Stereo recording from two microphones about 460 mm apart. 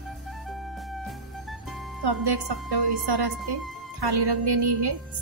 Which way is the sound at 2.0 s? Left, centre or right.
Right.